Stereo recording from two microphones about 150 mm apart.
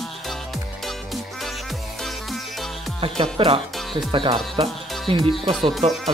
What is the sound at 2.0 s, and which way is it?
Music, centre (ahead or behind).